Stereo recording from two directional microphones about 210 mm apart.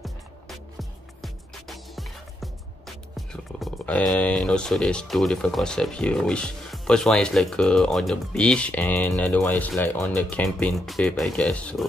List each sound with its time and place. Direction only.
0.0 s music: centre (ahead or behind)
3.2 s speech: centre (ahead or behind)